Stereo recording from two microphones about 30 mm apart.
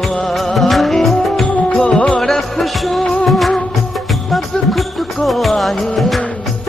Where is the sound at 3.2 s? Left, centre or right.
Centre.